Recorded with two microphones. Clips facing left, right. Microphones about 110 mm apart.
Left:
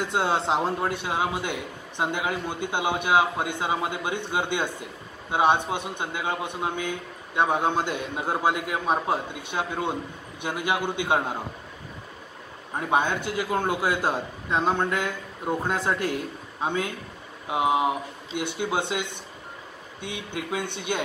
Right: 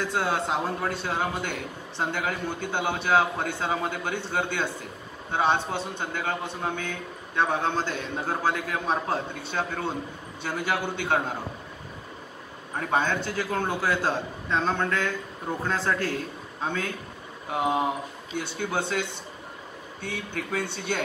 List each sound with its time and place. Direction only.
0.0 s speech: 25° left (ahead or behind)
12.7 s speech: 15° left (ahead or behind)